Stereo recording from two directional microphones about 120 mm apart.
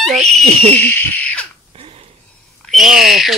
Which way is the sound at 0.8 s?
15° left (ahead or behind).